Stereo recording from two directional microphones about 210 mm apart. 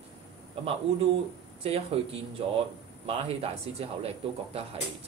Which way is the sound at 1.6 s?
30° right (ahead or behind).